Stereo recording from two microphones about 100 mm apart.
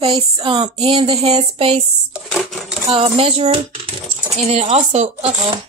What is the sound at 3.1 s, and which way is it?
Speech, 90° right.